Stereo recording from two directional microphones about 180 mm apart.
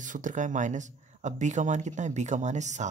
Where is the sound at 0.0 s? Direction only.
45° right (ahead or behind).